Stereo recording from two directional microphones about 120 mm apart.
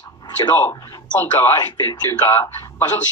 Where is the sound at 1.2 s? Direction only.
20° left (ahead or behind).